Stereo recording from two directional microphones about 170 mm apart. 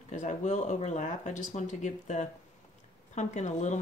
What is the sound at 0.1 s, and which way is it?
Speech, 45° left (ahead or behind).